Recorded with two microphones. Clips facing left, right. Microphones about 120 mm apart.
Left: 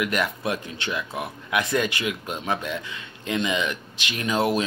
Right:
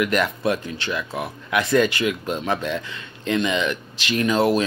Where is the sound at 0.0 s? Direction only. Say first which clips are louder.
Right 4 dB; 10° left (ahead or behind).